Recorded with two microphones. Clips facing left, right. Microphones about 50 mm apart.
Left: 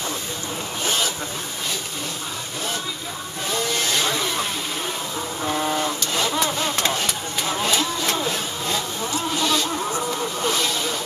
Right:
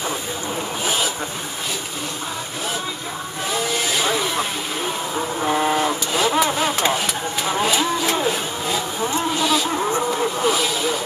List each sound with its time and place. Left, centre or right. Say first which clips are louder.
0.8 s vehicle: right 1 dB; centre
3.4 s vehicle: right 1 dB; centre
5.1 s vehicle: right 5 dB; right
5.8 s a sound: right 4 dB; centre
6.4 s vehicle: right 4 dB; centre
7.6 s a sound: right 3 dB; centre
8.3 s vehicle: right 3 dB; centre
9.7 s vehicle: right 4 dB; right
10.3 s vehicle: right 3 dB; centre